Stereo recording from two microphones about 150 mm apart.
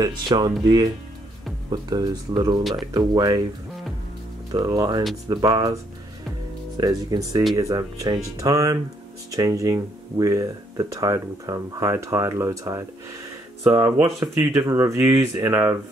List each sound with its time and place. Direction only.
0.0 s speech: 30° right (ahead or behind)
4.5 s speech: 25° right (ahead or behind)
6.8 s speech: 25° right (ahead or behind)